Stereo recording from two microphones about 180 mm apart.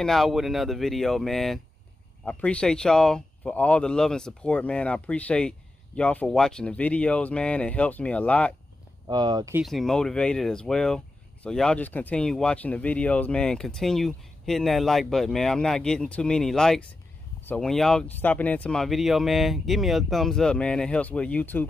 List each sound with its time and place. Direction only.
0.0 s speech: centre (ahead or behind)
9.0 s speech: 25° right (ahead or behind)
9.5 s speech: centre (ahead or behind)